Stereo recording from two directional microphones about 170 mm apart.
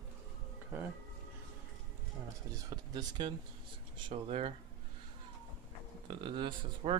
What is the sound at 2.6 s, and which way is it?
Speech, 25° right (ahead or behind).